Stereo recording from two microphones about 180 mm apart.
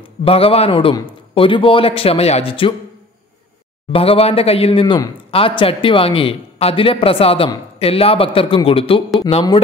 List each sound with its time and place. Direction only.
0.2 s speech: 30° left (ahead or behind)
3.9 s speech: 35° left (ahead or behind)